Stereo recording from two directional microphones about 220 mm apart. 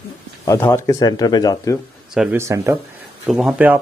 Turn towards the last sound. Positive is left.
turn(degrees=-5)  # may be behind; listen again after turning